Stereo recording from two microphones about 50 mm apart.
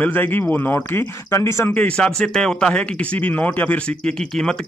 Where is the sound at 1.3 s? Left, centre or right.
Left.